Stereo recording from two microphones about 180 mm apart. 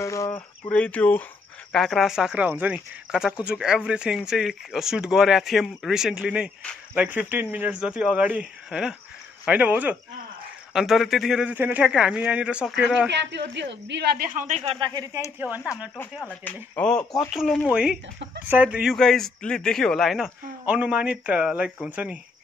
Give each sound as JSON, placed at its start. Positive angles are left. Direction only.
{"t": 0.0, "sound": "speech", "side_deg": 15}
{"t": 13.1, "sound": "speech", "side_deg": -75}
{"t": 14.5, "sound": "speech", "side_deg": -35}
{"t": 14.9, "sound": "speech", "side_deg": -20}
{"t": 15.3, "sound": "speech", "side_deg": -10}
{"t": 16.0, "sound": "speech", "side_deg": 10}